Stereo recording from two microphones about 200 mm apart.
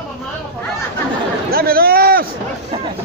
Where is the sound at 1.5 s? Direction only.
50° right (ahead or behind).